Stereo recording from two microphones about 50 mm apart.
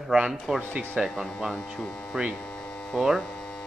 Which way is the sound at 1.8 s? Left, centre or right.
Left.